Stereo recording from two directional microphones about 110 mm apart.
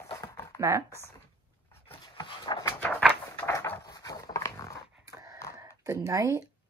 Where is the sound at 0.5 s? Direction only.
25° right (ahead or behind).